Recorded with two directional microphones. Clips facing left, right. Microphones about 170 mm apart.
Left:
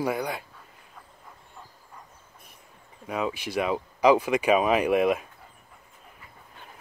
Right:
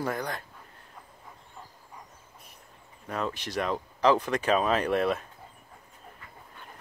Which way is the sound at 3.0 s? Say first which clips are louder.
Left 3 dB; 5° left (ahead or behind).